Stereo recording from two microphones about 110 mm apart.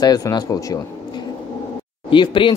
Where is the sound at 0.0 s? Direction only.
35° left (ahead or behind).